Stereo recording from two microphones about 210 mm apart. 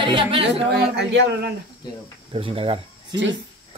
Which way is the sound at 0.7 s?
55° right (ahead or behind).